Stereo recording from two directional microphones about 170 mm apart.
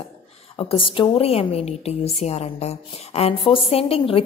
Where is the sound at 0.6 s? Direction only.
30° left (ahead or behind).